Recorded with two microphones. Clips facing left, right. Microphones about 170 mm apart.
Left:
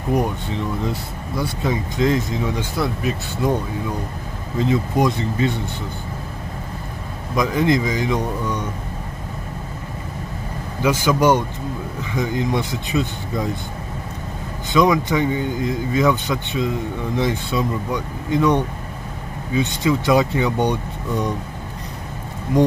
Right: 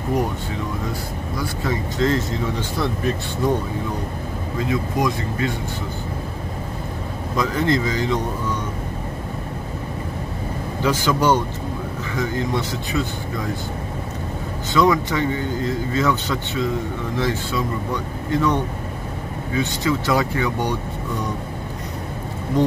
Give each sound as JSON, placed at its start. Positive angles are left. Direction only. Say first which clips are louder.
{"t": 1.4, "sound": "speech", "louder": "left 2 dB", "side_deg": 20}
{"t": 4.6, "sound": "speech", "louder": "left 3 dB", "side_deg": 25}
{"t": 7.3, "sound": "speech", "louder": "left 2 dB", "side_deg": 15}
{"t": 10.8, "sound": "speech", "louder": "left 2 dB", "side_deg": 10}
{"t": 14.7, "sound": "speech", "louder": "left 1 dB", "side_deg": 15}